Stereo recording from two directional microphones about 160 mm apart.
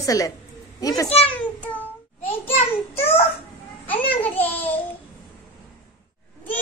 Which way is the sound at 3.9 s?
10° left (ahead or behind).